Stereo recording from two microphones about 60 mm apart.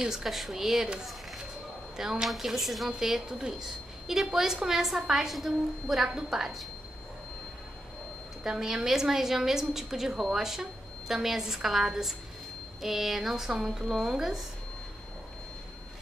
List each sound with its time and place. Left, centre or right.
0.0 s a woman's voice: centre
2.0 s a woman's voice: centre
8.5 s a woman's voice: centre